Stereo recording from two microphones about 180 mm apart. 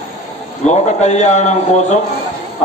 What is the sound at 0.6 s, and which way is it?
A man's voice, 40° left (ahead or behind).